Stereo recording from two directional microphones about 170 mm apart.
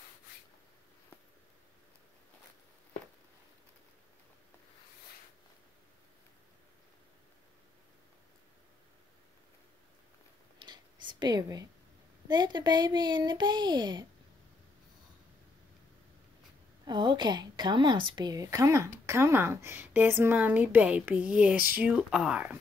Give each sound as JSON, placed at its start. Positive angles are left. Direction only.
{"t": 10.6, "sound": "writing", "side_deg": -25}
{"t": 12.3, "sound": "speech", "side_deg": -25}
{"t": 16.8, "sound": "a woman's voice", "side_deg": -25}